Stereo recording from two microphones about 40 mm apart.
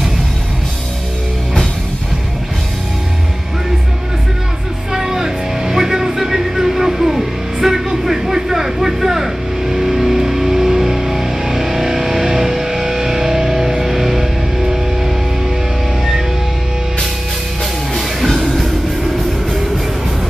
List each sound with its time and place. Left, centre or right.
4.9 s music: centre
18.4 s music: centre